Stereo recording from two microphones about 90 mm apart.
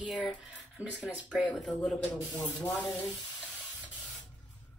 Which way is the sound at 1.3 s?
10° left (ahead or behind).